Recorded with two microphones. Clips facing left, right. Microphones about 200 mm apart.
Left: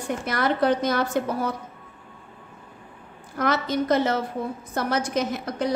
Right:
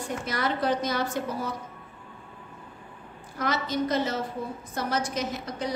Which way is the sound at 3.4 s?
60° left (ahead or behind).